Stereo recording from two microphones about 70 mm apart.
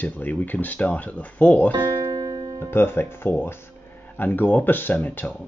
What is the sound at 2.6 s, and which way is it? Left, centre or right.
Speech, left.